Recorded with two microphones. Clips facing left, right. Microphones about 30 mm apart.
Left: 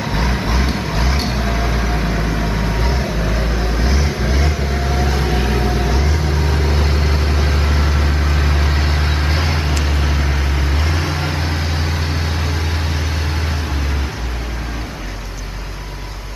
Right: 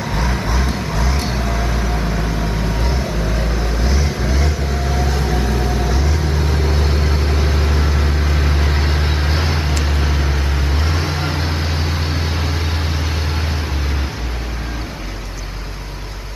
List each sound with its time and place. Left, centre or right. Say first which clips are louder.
0.0 s vehicle: left 1 dB; centre